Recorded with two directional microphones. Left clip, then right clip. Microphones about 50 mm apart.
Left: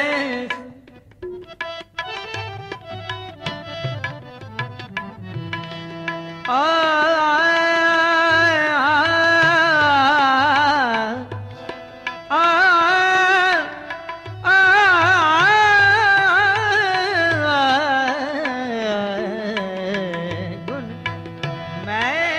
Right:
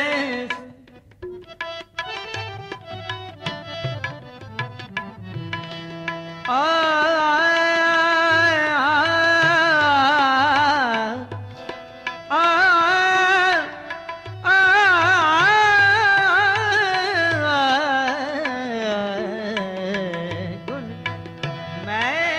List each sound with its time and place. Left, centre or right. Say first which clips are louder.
0.0 s music: left 1 dB; right
1.6 s tabla: left 1 dB; right
5.5 s music: left 1 dB; right